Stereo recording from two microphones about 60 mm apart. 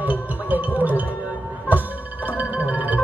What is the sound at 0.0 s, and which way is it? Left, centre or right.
Music, right.